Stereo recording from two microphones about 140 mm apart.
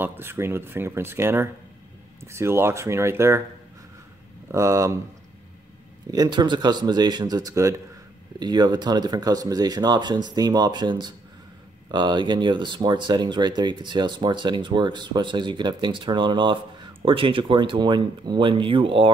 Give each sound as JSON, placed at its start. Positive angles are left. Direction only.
{"t": 0.0, "sound": "speech", "side_deg": -15}
{"t": 4.5, "sound": "speech", "side_deg": -20}
{"t": 6.1, "sound": "speech", "side_deg": -30}